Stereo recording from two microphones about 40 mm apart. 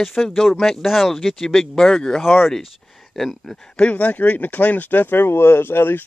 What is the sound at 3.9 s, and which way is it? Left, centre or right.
Speech, left.